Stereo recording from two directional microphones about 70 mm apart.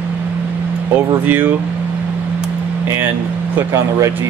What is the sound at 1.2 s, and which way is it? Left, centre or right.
Speech, right.